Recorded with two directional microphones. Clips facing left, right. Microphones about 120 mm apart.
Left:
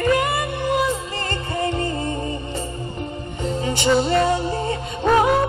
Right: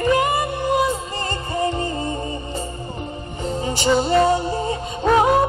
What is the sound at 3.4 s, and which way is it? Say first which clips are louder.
Music: even; 35° right (ahead or behind).